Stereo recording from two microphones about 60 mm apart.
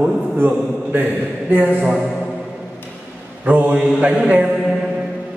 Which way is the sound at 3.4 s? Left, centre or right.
Right.